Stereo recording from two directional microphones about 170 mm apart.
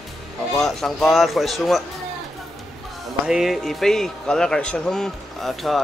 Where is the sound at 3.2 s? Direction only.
Centre (ahead or behind).